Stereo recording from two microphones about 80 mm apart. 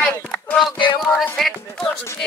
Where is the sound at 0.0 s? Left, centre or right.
Centre.